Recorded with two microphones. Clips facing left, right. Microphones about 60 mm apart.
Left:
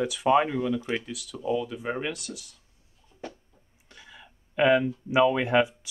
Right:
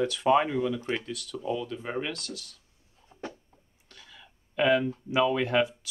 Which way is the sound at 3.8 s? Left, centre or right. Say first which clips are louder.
Left 3 dB; centre.